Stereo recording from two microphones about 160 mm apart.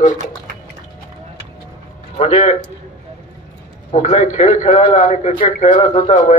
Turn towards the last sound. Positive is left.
turn(degrees=45)  # may be behind; listen again after turning